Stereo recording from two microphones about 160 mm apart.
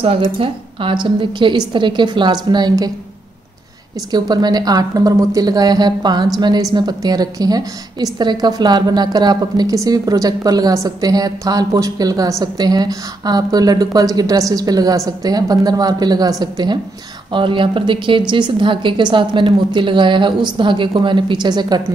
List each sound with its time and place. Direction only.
0.0 s a woman's voice: 35° right (ahead or behind)
4.1 s a woman's voice: 25° right (ahead or behind)